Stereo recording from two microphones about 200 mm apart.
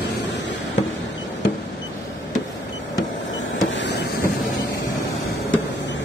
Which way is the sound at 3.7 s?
65° left (ahead or behind).